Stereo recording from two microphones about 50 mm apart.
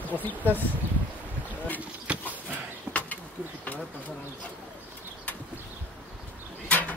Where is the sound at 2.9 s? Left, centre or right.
Right.